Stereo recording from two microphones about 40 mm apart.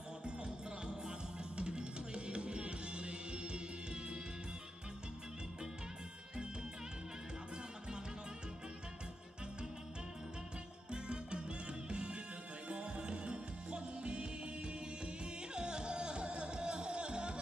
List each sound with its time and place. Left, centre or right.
0.2 s music: right
10.9 s music: right